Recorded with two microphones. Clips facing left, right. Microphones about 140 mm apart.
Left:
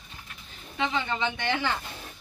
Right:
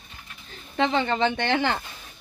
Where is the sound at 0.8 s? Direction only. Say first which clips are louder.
Right 6 dB; 75° right (ahead or behind).